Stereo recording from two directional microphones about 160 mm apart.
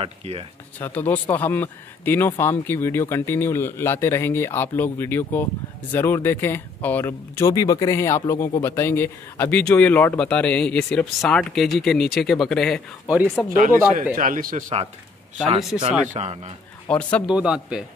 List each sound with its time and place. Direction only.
0.0 s speech: 35° right (ahead or behind)
0.7 s speech: 10° left (ahead or behind)
13.1 s a man's voice: 10° right (ahead or behind)
14.1 s a man's voice: 60° right (ahead or behind)
16.1 s a man's voice: 45° right (ahead or behind)
16.8 s a man's voice: 10° left (ahead or behind)
17.3 s a man's voice: 5° right (ahead or behind)